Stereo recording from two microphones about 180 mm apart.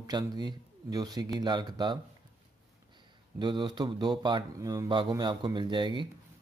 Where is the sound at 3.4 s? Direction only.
25° right (ahead or behind).